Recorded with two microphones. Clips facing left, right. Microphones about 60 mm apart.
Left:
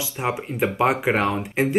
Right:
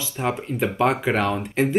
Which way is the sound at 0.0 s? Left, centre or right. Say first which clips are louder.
Even; centre.